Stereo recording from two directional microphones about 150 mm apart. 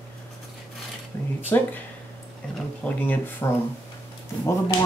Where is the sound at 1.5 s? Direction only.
15° left (ahead or behind).